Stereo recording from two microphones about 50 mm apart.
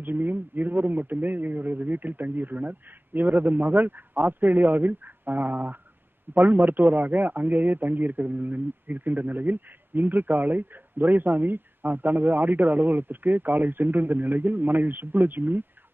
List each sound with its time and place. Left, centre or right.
0.0 s a man's voice: right